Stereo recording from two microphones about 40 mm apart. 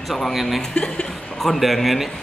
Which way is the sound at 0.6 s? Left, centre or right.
Left.